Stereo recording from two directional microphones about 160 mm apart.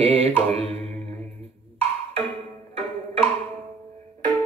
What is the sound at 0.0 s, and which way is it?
Mantra, 35° right (ahead or behind).